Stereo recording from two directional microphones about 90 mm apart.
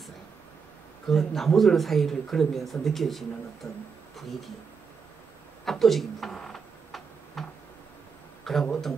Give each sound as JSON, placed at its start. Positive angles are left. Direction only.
{"t": 1.0, "sound": "speech", "side_deg": 0}
{"t": 3.6, "sound": "speech", "side_deg": 35}
{"t": 5.7, "sound": "tick-tock", "side_deg": 0}
{"t": 8.5, "sound": "speech", "side_deg": 5}